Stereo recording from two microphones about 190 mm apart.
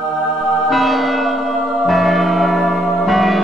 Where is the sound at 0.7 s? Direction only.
Centre (ahead or behind).